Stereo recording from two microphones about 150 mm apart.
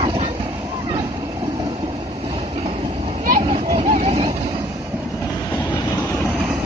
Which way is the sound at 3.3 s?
65° right (ahead or behind).